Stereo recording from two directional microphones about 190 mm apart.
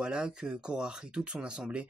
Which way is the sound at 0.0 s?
5° right (ahead or behind).